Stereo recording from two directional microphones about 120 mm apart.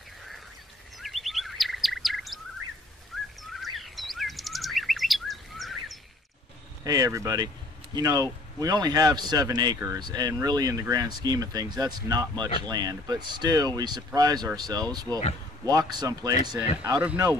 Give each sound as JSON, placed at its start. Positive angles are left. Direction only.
{"t": 0.9, "sound": "bird", "side_deg": 0}
{"t": 6.8, "sound": "speech", "side_deg": -30}